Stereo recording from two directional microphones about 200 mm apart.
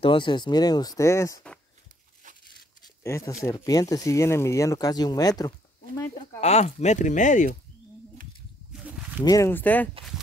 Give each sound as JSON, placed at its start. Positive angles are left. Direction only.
{"t": 0.0, "sound": "speech", "side_deg": 25}
{"t": 3.0, "sound": "speech", "side_deg": 15}
{"t": 6.4, "sound": "speech", "side_deg": 35}
{"t": 8.8, "sound": "a sound", "side_deg": -10}
{"t": 9.2, "sound": "speech", "side_deg": 15}